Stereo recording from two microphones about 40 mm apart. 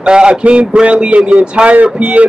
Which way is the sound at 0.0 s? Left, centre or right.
Right.